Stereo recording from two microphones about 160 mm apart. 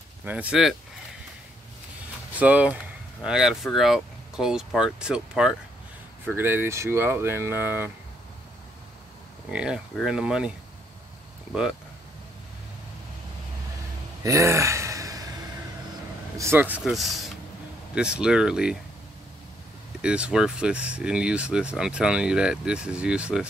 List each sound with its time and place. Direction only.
0.2 s speech: 10° right (ahead or behind)
2.3 s speech: 10° right (ahead or behind)
9.5 s speech: 5° right (ahead or behind)
14.2 s a sound: 20° right (ahead or behind)
16.3 s speech: 15° right (ahead or behind)
20.0 s speech: 5° right (ahead or behind)